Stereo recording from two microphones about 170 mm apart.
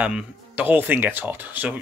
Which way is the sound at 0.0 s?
10° right (ahead or behind).